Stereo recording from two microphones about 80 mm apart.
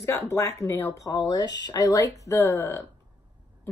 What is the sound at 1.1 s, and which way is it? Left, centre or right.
Speech, left.